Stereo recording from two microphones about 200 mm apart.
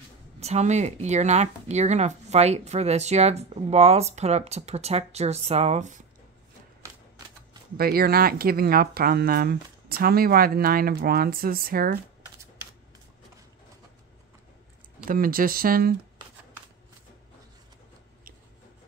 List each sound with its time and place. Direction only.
0.4 s speech: 35° right (ahead or behind)
7.7 s speech: 50° right (ahead or behind)
15.0 s speech: 45° right (ahead or behind)